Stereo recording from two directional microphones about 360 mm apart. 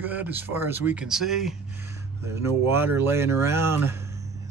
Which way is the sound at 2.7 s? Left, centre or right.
Centre.